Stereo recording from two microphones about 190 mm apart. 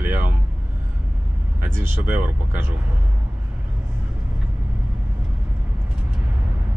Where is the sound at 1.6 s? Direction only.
10° right (ahead or behind).